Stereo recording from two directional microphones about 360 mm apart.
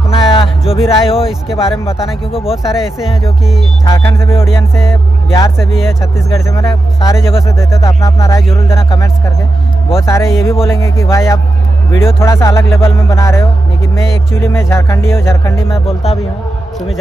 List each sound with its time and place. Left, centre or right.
0.1 s music: centre
0.8 s speech: centre
2.5 s speech: centre